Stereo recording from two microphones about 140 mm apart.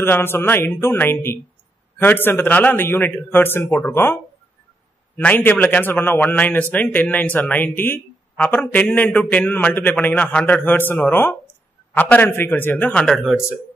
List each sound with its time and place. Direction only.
0.0 s speech: 15° left (ahead or behind)